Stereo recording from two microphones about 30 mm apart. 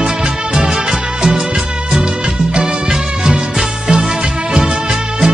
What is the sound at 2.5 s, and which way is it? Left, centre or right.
Music, right.